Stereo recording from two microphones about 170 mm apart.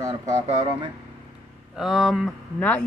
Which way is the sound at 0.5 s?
40° right (ahead or behind).